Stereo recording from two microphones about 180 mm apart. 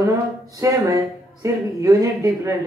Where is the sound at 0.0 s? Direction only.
20° right (ahead or behind).